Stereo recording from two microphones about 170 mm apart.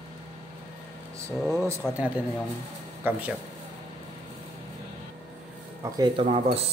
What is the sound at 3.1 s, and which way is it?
Speech, 10° right (ahead or behind).